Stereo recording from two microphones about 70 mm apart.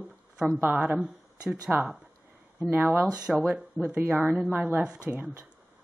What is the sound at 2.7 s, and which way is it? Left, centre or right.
Speech, right.